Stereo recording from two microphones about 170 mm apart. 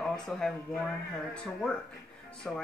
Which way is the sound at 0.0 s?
5° left (ahead or behind).